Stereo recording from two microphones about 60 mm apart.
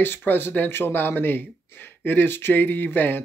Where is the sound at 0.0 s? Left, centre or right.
Left.